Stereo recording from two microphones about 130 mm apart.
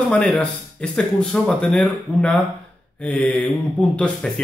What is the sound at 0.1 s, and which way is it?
Speech, 10° left (ahead or behind).